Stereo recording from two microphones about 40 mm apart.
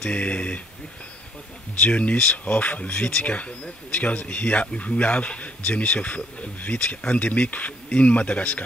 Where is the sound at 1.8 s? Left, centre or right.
Left.